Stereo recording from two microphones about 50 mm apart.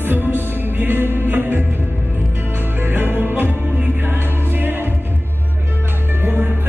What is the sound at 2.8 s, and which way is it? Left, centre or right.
Music, right.